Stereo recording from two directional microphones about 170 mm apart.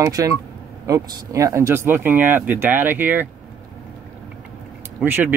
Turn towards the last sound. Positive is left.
turn(degrees=-10)  # may be behind; listen again after turning